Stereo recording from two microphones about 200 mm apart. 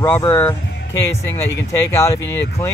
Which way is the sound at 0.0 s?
20° left (ahead or behind).